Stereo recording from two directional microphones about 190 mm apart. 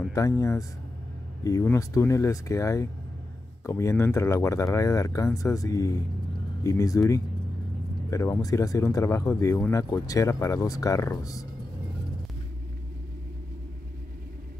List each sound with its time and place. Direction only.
0.1 s speech: 15° left (ahead or behind)